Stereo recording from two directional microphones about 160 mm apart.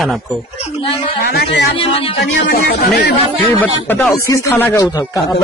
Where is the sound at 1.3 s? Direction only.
90° left.